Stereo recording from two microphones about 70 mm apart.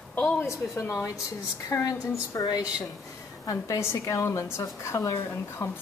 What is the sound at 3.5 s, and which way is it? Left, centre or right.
A woman's voice, left.